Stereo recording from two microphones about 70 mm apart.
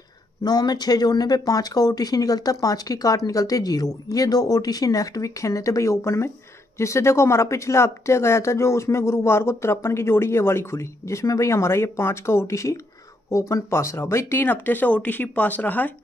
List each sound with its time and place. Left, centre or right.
0.4 s speech: left